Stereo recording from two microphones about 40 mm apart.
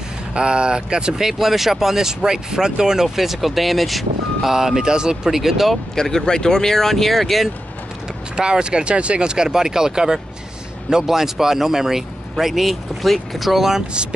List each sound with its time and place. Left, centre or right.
0.3 s speech: right
3.2 s speech: centre
5.9 s speech: centre
8.4 s speech: right